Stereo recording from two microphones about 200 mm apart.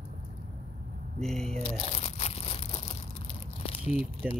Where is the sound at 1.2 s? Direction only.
Centre (ahead or behind).